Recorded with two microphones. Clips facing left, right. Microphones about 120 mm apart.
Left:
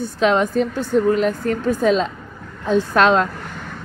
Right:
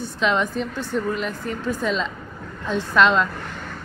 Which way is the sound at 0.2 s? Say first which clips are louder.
Left 5 dB; 45° left (ahead or behind).